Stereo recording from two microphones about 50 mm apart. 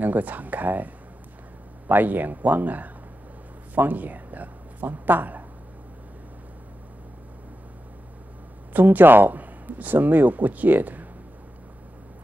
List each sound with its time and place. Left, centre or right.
0.0 s speech: right
8.7 s speech: right